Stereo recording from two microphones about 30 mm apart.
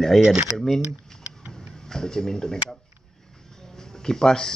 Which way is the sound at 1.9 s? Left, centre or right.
Left.